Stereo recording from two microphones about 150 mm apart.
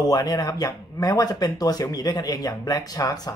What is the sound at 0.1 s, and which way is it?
Speech, 25° left (ahead or behind).